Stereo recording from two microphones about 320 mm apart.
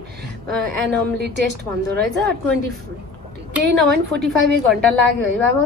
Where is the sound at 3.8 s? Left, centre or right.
Right.